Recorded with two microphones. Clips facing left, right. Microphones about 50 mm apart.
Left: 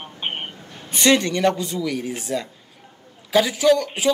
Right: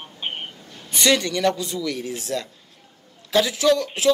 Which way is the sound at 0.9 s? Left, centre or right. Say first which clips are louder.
Left 2 dB; centre.